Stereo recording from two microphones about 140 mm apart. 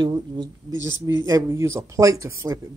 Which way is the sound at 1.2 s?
20° right (ahead or behind).